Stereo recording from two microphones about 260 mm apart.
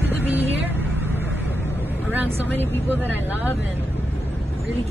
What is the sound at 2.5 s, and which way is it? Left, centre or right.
Speech, centre.